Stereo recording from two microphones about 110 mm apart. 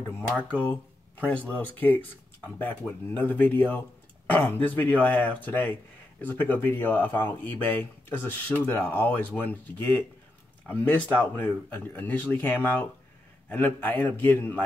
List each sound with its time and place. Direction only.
0.6 s speech: 15° left (ahead or behind)